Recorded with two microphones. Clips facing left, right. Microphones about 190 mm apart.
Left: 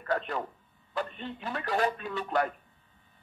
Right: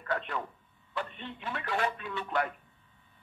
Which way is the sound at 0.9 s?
40° left (ahead or behind).